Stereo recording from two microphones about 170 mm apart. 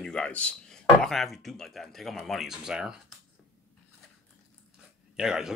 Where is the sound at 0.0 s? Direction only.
5° left (ahead or behind).